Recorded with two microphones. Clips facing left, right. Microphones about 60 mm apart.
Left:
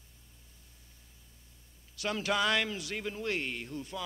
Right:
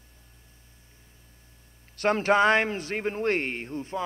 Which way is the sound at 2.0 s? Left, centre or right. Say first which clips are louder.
Right 10 dB; right.